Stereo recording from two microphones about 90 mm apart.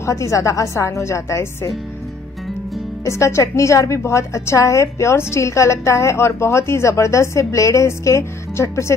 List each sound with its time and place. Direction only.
0.0 s a woman's voice: 35° left (ahead or behind)
3.1 s a woman's voice: 35° left (ahead or behind)